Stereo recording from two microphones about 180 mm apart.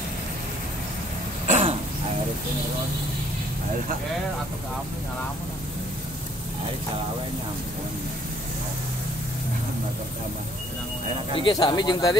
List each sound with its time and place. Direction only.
1.5 s throat clearing: 35° right (ahead or behind)
11.4 s speech: 20° left (ahead or behind)